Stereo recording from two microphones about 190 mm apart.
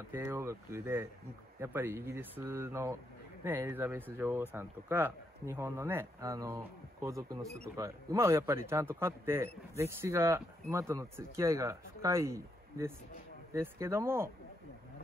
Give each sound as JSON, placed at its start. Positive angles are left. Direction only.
{"t": 0.1, "sound": "speech", "side_deg": -10}